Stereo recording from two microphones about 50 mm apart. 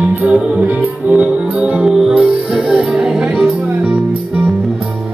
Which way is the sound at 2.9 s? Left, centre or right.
Centre.